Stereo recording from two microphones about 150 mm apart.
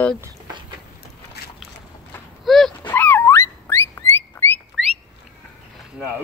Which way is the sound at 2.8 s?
10° left (ahead or behind).